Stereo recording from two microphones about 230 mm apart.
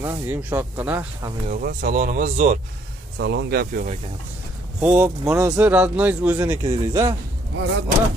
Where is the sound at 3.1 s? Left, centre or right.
Right.